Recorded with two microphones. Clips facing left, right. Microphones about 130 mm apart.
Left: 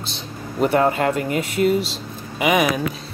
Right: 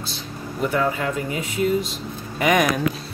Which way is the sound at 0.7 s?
60° left (ahead or behind).